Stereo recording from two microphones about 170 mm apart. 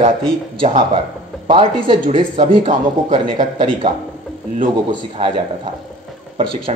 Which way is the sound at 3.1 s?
30° right (ahead or behind).